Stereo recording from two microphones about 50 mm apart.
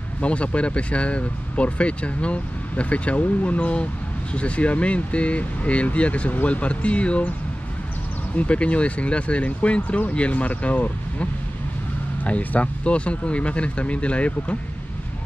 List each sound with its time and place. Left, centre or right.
0.2 s speech: left
8.4 s speech: left